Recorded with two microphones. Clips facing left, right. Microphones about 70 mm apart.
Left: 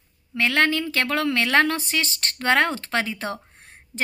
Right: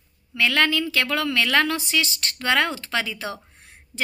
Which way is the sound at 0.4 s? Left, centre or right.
Left.